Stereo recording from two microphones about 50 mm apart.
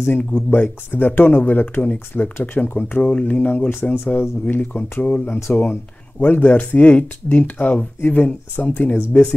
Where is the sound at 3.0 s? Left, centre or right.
Left.